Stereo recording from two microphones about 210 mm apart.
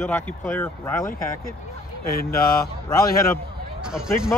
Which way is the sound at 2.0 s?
45° left (ahead or behind).